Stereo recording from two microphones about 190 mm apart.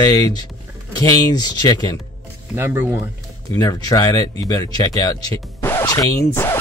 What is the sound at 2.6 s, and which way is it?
Speech, 10° right (ahead or behind).